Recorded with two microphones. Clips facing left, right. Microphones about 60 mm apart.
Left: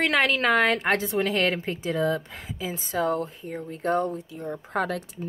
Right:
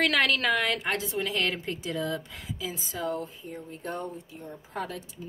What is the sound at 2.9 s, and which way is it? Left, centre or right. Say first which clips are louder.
Speech: left 8 dB; left.